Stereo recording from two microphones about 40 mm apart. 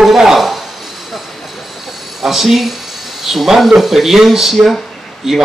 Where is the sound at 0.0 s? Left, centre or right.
Centre.